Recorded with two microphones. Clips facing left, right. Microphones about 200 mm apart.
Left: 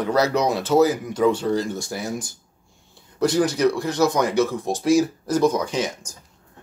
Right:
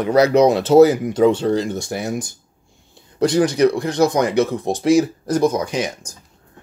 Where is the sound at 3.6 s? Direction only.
55° right (ahead or behind).